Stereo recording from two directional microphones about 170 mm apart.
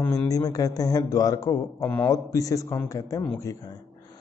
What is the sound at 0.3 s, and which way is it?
Speech, 20° left (ahead or behind).